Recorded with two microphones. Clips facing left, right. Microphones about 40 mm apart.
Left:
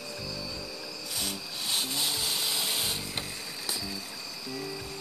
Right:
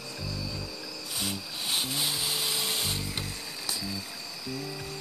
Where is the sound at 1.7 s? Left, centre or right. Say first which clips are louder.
Right 1 dB; centre.